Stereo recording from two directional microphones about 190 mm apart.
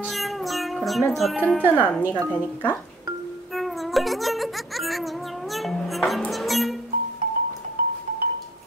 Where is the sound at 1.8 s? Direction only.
10° left (ahead or behind).